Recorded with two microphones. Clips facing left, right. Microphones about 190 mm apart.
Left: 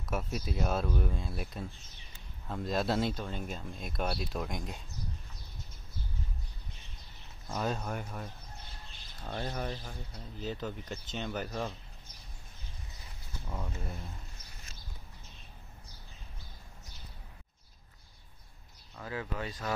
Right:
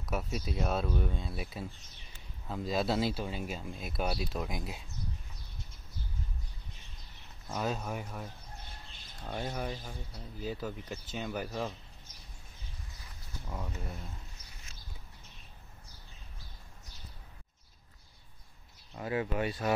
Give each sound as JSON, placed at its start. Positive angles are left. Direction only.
{"t": 0.0, "sound": "speech", "side_deg": 0}
{"t": 7.4, "sound": "speech", "side_deg": -5}
{"t": 13.5, "sound": "speech", "side_deg": 0}
{"t": 18.9, "sound": "speech", "side_deg": -15}